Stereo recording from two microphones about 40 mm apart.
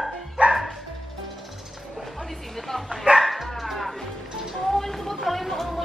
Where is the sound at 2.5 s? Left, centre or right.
Centre.